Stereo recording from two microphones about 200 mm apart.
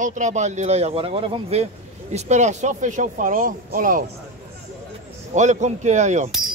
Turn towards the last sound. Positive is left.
turn(degrees=-35)  # may be behind; listen again after turning